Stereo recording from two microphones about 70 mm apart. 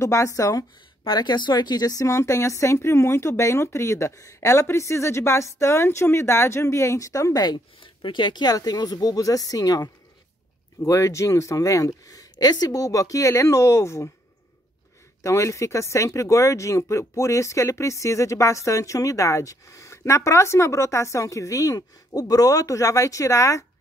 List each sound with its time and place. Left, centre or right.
0.0 s speech: left
1.1 s speech: left
8.2 s speech: left
10.8 s speech: left
15.2 s speech: left